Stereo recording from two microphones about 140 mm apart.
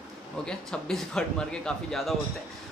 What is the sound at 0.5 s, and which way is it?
Speech, 5° left (ahead or behind).